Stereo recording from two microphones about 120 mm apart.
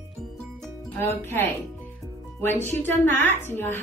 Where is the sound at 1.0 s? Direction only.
20° left (ahead or behind).